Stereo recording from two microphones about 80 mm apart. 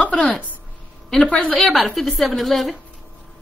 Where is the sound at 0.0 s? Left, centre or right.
Centre.